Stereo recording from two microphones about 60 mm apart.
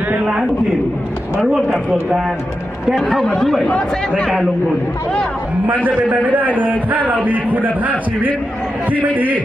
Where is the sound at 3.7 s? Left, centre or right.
Left.